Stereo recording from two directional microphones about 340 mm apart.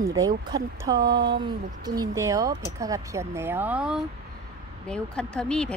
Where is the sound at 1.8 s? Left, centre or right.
Centre.